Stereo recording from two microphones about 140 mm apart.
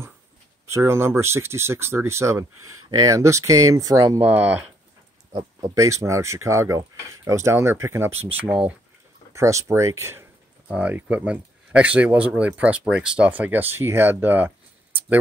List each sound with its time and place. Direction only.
0.7 s speech: 20° right (ahead or behind)
9.3 s speech: 20° right (ahead or behind)